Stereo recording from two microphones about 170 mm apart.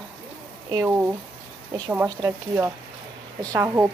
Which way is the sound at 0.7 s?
15° right (ahead or behind).